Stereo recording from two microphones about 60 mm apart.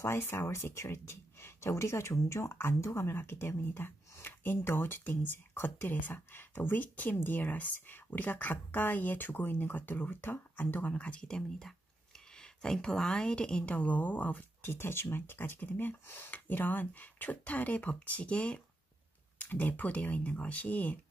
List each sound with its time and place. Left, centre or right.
0.0 s a woman's voice: left